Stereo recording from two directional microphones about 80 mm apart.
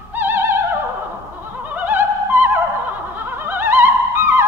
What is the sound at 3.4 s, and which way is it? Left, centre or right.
Music, right.